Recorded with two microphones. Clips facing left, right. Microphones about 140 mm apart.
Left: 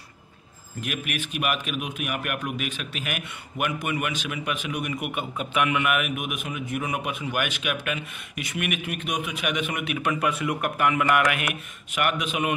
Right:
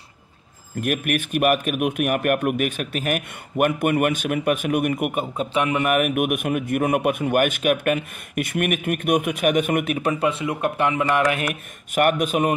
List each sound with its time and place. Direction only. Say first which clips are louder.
0.7 s speech: right 8 dB; 50° right (ahead or behind)
5.4 s speech: right 2 dB; 30° right (ahead or behind); by 9.9 s 50° right (ahead or behind)
10.0 s speech: right 3 dB; 30° right (ahead or behind)
11.9 s speech: right 7 dB; 45° right (ahead or behind)